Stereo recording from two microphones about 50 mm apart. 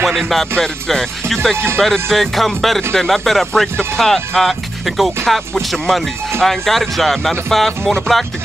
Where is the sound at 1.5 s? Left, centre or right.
Right.